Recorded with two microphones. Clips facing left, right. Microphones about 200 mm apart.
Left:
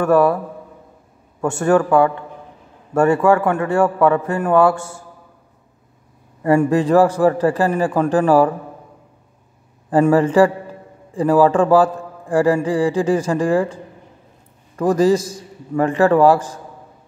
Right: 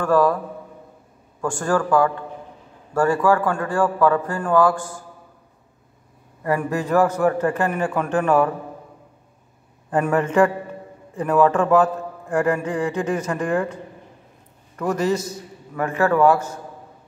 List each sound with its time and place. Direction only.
0.0 s a man's voice: 20° left (ahead or behind)
1.4 s a man's voice: 25° left (ahead or behind)
6.4 s a man's voice: 30° left (ahead or behind)
9.8 s a man's voice: 30° left (ahead or behind)
15.7 s a man's voice: 30° left (ahead or behind)